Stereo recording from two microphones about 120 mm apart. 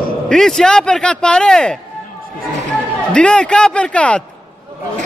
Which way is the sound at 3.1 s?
10° left (ahead or behind).